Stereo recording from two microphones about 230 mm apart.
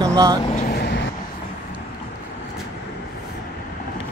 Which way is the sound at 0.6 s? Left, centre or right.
Left.